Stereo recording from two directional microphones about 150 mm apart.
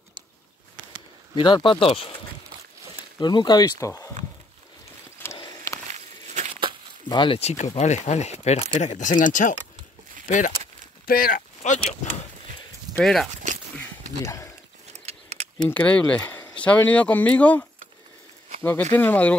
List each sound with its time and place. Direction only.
1.3 s speech: 35° left (ahead or behind)
3.2 s speech: 30° left (ahead or behind)
5.9 s a sound: 50° right (ahead or behind)
7.1 s speech: 35° left (ahead or behind); by 10.5 s 55° left (ahead or behind)
11.1 s speech: 75° left (ahead or behind); by 12.1 s 55° left (ahead or behind)
12.9 s speech: 5° left (ahead or behind)
14.2 s speech: 20° left (ahead or behind)
15.0 s a sound: 45° right (ahead or behind)
15.7 s speech: 10° left (ahead or behind)